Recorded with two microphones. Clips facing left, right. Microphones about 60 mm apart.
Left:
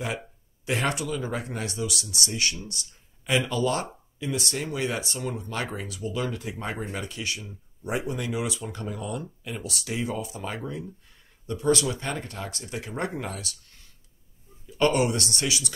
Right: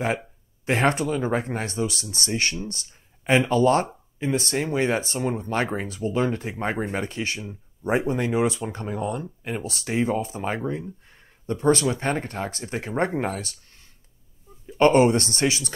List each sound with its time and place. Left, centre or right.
0.7 s speech: right